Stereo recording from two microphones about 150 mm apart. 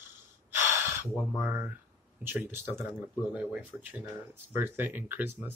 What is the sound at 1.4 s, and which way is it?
Speech, 15° right (ahead or behind).